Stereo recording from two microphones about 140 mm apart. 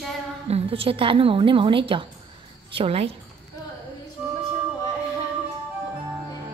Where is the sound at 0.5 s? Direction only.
40° right (ahead or behind).